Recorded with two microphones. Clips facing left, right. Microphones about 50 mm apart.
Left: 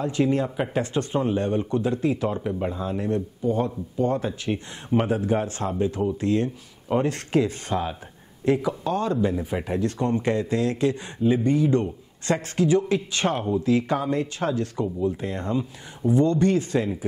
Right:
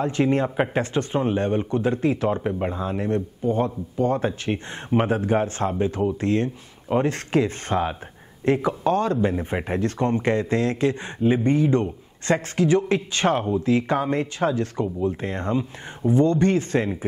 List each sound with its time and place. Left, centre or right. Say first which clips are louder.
0.0 s speech: right 2 dB; right